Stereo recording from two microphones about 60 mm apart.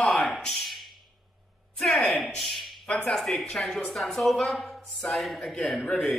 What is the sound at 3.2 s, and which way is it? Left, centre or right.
Speech, centre.